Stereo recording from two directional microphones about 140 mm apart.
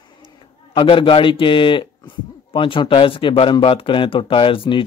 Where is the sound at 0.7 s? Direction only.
40° left (ahead or behind).